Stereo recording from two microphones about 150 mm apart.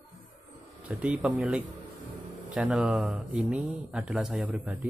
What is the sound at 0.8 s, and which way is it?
Speech, 10° right (ahead or behind).